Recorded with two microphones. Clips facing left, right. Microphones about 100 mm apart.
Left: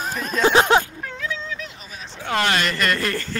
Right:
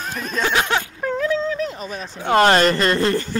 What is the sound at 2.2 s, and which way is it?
A woman's voice, 35° right (ahead or behind).